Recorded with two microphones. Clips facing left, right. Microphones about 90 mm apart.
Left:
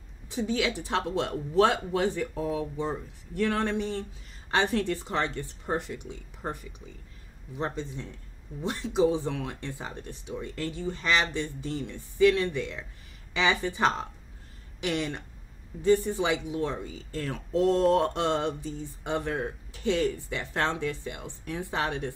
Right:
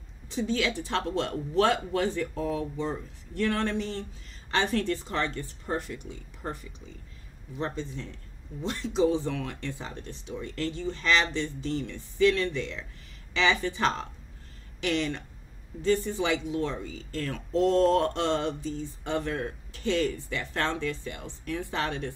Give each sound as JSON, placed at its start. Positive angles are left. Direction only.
{"t": 0.3, "sound": "speech", "side_deg": 15}
{"t": 15.7, "sound": "a woman's voice", "side_deg": 0}
{"t": 16.1, "sound": "speech", "side_deg": 15}